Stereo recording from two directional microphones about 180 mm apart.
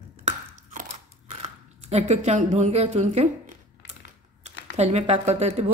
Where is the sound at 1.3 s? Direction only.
35° right (ahead or behind).